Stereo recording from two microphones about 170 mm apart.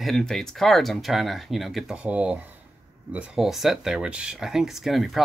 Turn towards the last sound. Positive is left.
turn(degrees=0)  # may be behind; listen again after turning